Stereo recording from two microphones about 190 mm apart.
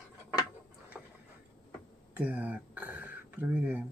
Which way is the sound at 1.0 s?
Centre (ahead or behind).